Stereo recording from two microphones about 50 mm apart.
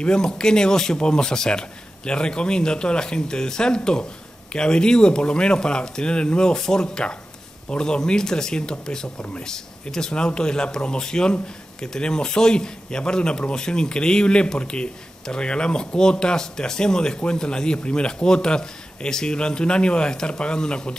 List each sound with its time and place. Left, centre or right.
0.0 s a man's voice: centre